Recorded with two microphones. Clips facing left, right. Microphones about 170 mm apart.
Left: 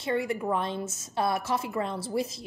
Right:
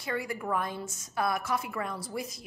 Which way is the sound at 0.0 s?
25° left (ahead or behind).